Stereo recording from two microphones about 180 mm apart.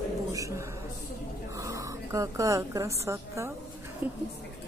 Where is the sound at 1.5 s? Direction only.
15° right (ahead or behind).